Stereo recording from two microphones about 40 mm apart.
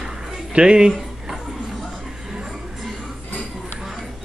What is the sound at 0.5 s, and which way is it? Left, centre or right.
Speech, right.